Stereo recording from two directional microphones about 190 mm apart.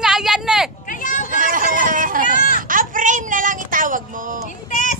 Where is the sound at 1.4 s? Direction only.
45° right (ahead or behind).